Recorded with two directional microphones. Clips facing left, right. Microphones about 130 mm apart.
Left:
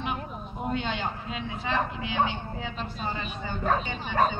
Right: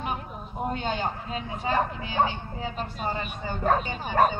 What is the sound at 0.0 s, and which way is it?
A man's voice, 35° right (ahead or behind).